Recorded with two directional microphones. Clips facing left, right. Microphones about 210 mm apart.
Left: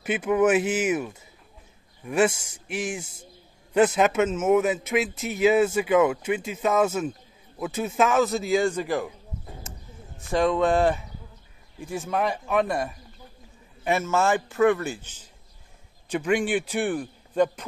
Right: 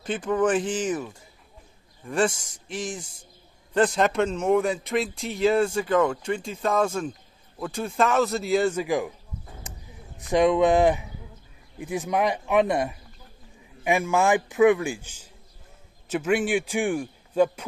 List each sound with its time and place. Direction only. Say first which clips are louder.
0.0 s a man's voice: left 2 dB; 10° left (ahead or behind); by 9.1 s 10° right (ahead or behind)
9.6 s a sound: left 1 dB; 15° right (ahead or behind)
11.8 s a man's voice: right 2 dB; 15° right (ahead or behind)